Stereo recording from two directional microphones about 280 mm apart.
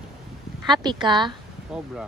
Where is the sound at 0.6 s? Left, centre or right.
Centre.